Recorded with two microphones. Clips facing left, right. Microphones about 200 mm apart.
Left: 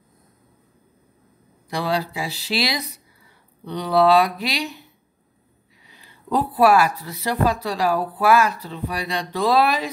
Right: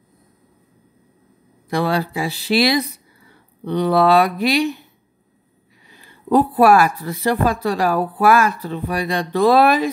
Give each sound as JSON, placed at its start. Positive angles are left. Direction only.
{"t": 1.7, "sound": "speech", "side_deg": -55}
{"t": 5.9, "sound": "speech", "side_deg": -50}